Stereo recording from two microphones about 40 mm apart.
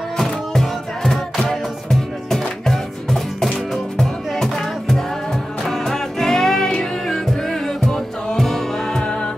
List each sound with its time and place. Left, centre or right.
0.2 s music: centre
8.9 s music: centre